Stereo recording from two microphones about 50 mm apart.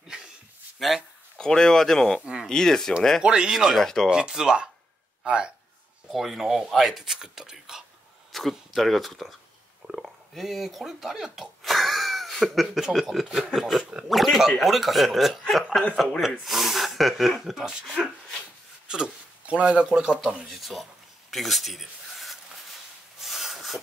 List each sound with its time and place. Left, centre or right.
0.7 s speech: centre
1.4 s speech: centre
3.2 s speech: centre
3.7 s speech: centre
4.1 s speech: centre
6.0 s speech: centre
8.3 s speech: centre
18.9 s speech: centre
21.3 s a sound: centre